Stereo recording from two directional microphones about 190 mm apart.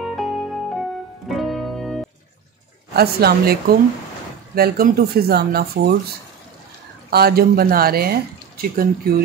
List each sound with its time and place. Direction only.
0.0 s music: centre (ahead or behind)
2.9 s speech: 55° right (ahead or behind)
7.1 s speech: 55° right (ahead or behind)